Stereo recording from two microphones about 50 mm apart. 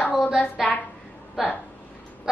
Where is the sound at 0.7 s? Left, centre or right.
Left.